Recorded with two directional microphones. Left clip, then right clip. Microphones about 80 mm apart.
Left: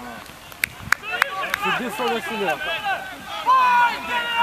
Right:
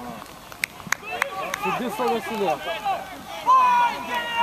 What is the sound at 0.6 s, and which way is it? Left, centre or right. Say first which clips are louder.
Run: left 3 dB; centre.